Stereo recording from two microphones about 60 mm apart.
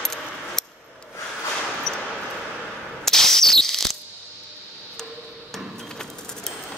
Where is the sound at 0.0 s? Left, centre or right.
Centre.